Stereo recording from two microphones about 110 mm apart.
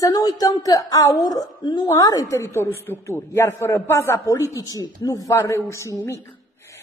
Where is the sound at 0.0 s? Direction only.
35° left (ahead or behind).